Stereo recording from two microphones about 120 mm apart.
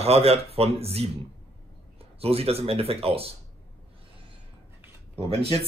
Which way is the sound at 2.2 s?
55° right (ahead or behind).